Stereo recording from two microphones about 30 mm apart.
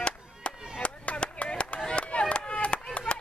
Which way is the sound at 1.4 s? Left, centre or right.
Left.